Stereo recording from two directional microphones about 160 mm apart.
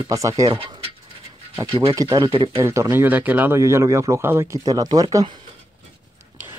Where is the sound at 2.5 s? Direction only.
20° right (ahead or behind).